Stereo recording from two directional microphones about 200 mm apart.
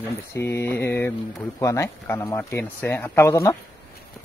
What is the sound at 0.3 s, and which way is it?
Speech, 15° left (ahead or behind).